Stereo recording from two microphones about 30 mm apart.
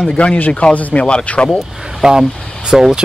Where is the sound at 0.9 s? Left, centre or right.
Left.